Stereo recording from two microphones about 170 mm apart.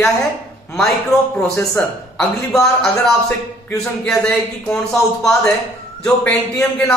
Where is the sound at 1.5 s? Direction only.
20° left (ahead or behind).